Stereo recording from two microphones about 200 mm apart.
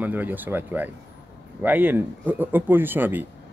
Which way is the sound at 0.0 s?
10° right (ahead or behind).